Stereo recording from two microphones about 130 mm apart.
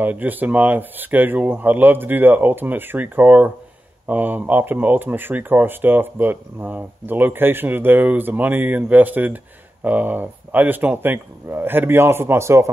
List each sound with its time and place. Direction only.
0.0 s speech: 15° right (ahead or behind)